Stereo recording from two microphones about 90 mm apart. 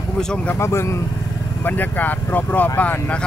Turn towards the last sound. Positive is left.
turn(degrees=20)  # may be behind; listen again after turning